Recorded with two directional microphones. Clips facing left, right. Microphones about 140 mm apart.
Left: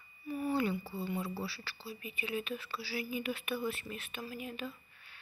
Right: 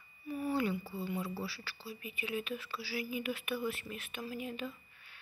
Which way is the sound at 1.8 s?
10° right (ahead or behind).